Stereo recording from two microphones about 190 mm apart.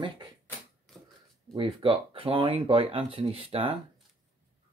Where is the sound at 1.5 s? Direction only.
30° right (ahead or behind).